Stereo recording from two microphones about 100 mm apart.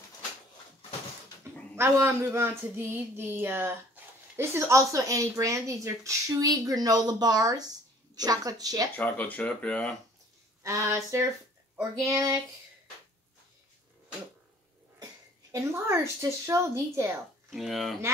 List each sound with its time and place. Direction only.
1.8 s speech: 25° right (ahead or behind)
8.9 s speech: 15° left (ahead or behind)
10.6 s speech: 30° right (ahead or behind)
15.5 s speech: 30° right (ahead or behind)
17.5 s speech: centre (ahead or behind)